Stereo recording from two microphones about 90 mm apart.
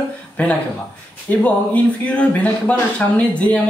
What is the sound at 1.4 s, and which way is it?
Speech, 15° left (ahead or behind).